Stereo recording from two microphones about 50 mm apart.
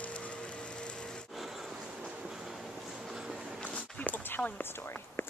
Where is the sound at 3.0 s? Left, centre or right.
Centre.